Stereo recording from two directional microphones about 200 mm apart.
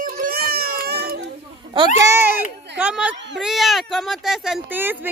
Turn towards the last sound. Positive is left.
turn(degrees=-10)  # may be behind; listen again after turning